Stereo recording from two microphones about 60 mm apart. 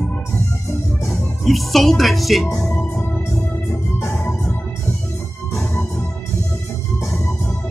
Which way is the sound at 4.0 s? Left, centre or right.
Left.